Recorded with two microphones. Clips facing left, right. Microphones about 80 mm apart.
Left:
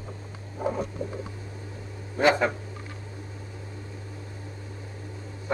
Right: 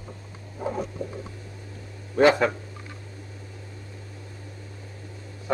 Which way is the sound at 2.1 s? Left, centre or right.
Right.